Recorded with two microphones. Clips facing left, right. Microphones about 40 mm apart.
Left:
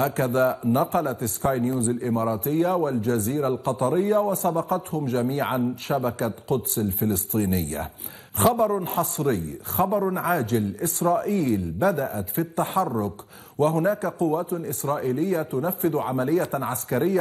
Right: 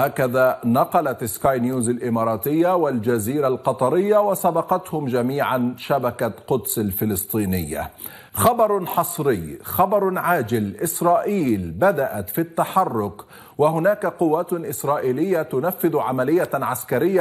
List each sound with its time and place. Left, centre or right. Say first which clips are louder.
0.0 s a man's voice: right 4 dB; centre
2.2 s a man's voice: right 5 dB; centre
8.4 s a man's voice: right 4 dB; centre
15.8 s a man's voice: right 4 dB; centre